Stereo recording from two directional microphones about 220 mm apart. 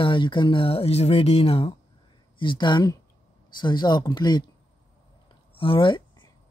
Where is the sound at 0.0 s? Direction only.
20° left (ahead or behind).